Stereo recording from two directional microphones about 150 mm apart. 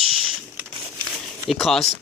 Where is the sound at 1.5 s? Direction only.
Centre (ahead or behind).